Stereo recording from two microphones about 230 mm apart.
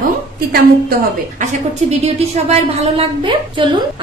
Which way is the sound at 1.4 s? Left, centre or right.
Right.